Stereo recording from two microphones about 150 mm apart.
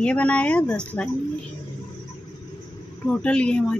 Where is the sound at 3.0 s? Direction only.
10° left (ahead or behind).